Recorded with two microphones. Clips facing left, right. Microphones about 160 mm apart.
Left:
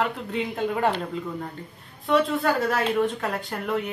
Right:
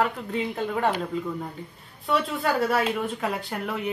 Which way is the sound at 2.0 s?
5° right (ahead or behind).